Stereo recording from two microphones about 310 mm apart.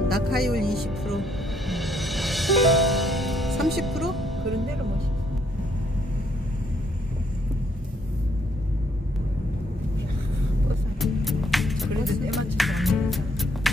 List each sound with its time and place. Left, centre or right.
0.1 s music: right
0.7 s speech: centre
1.7 s music: centre
11.0 s music: centre